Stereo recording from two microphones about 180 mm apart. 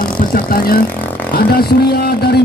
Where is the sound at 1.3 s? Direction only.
60° left (ahead or behind).